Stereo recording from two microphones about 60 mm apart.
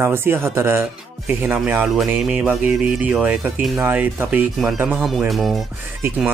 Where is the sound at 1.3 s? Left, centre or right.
Right.